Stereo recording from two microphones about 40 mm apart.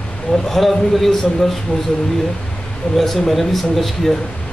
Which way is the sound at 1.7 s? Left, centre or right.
Left.